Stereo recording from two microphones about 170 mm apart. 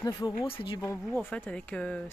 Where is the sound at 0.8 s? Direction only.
10° left (ahead or behind).